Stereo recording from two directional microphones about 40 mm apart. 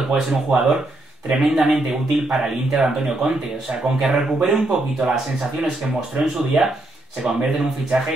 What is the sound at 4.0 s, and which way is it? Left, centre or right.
Speech, centre.